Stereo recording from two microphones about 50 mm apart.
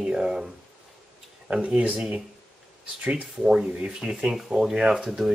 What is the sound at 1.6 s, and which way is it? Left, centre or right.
Speech, right.